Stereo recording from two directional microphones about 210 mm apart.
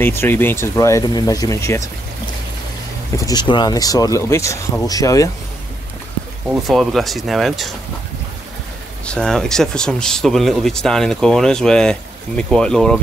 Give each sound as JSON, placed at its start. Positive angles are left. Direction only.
{"t": 0.0, "sound": "speech", "side_deg": 10}
{"t": 3.2, "sound": "speech", "side_deg": 20}
{"t": 6.5, "sound": "speech", "side_deg": 0}
{"t": 9.0, "sound": "speech", "side_deg": 5}